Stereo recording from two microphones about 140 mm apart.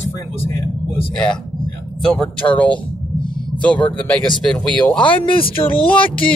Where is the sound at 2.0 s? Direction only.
5° left (ahead or behind).